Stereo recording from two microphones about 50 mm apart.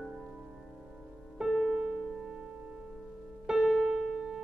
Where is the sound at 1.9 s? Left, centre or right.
Centre.